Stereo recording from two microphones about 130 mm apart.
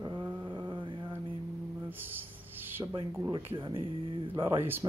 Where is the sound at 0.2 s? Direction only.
15° right (ahead or behind).